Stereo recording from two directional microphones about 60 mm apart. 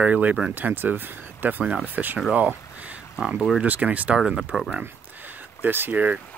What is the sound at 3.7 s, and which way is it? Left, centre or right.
Speech, right.